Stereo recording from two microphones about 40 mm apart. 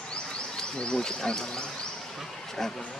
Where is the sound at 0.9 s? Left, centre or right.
Centre.